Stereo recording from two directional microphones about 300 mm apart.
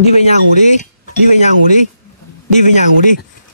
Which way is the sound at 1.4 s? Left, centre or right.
Left.